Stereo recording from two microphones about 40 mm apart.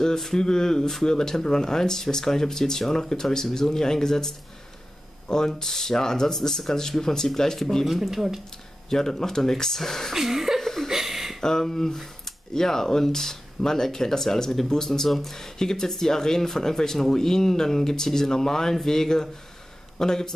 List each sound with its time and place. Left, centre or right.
0.2 s speech: centre
5.6 s speech: centre
7.8 s speech: centre
8.9 s speech: centre
10.1 s chuckle: centre
10.6 s chuckle: centre
10.9 s a sound: centre
11.4 s speech: centre